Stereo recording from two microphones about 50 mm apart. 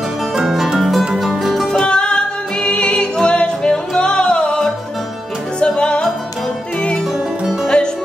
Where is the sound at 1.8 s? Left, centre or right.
Centre.